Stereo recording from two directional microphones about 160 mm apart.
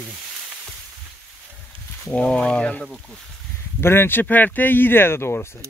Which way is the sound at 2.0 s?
5° left (ahead or behind).